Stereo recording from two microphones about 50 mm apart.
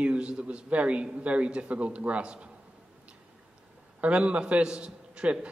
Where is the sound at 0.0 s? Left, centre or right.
Right.